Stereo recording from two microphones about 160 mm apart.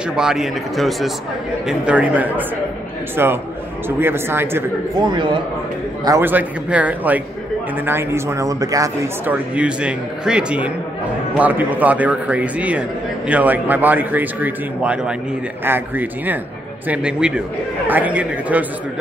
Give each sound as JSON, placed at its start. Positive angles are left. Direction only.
{"t": 0.1, "sound": "speech", "side_deg": -5}
{"t": 4.9, "sound": "a man's voice", "side_deg": -25}
{"t": 6.0, "sound": "speech", "side_deg": -15}